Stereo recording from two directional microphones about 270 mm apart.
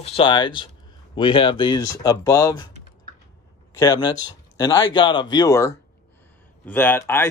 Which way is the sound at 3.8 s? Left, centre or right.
Centre.